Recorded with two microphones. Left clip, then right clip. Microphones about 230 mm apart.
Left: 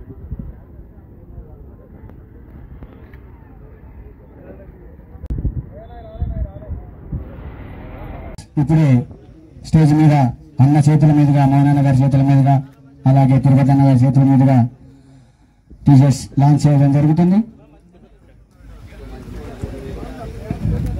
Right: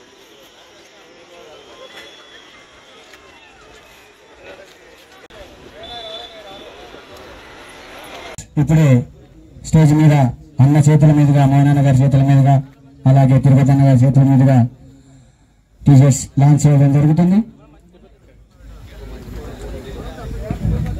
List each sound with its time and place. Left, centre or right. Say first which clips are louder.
8.4 s a man's voice: even; right
15.8 s a man's voice: even; right